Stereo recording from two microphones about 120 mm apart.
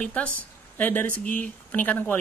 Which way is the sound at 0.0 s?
10° left (ahead or behind).